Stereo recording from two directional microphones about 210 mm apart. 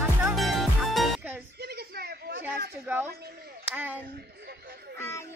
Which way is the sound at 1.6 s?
50° right (ahead or behind).